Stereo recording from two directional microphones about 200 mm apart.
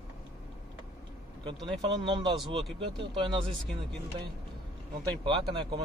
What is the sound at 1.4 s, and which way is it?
A man's voice, 20° right (ahead or behind).